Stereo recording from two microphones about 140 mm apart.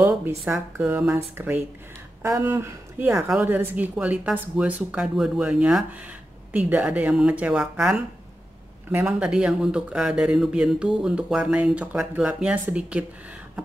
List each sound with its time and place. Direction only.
0.5 s speech: 15° right (ahead or behind)
9.0 s speech: 5° right (ahead or behind)